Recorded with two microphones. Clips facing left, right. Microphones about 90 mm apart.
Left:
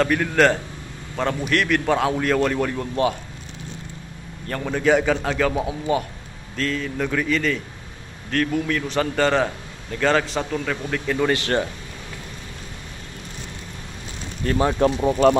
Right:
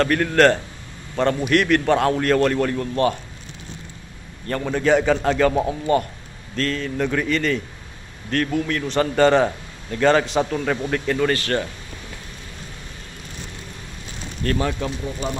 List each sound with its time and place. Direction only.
0.0 s a man's voice: 5° left (ahead or behind)
4.5 s a man's voice: centre (ahead or behind)
11.1 s speech: 10° left (ahead or behind)
15.0 s speech: 60° left (ahead or behind)